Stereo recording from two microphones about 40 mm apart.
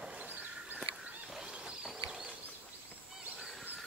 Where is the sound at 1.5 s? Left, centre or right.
Right.